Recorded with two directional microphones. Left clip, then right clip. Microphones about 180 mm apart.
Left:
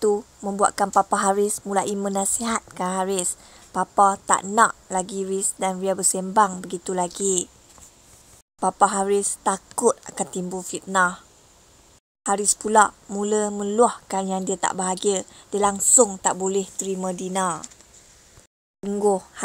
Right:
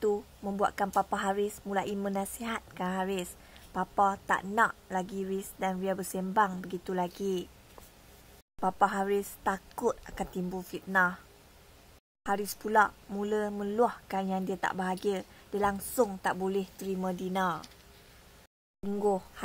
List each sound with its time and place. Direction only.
0.0 s a woman's voice: 35° left (ahead or behind)
8.5 s a woman's voice: 35° left (ahead or behind)
12.2 s a woman's voice: 35° left (ahead or behind)
18.8 s a woman's voice: 35° left (ahead or behind)